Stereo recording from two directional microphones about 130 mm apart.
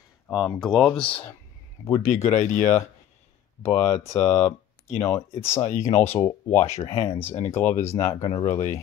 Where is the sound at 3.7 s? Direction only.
20° left (ahead or behind).